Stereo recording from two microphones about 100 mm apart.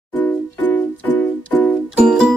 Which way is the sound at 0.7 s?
15° left (ahead or behind).